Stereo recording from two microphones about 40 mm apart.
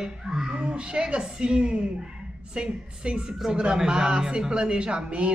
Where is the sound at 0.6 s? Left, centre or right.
Right.